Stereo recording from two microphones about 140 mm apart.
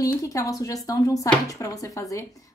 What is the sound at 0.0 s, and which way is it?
Speech, 25° left (ahead or behind).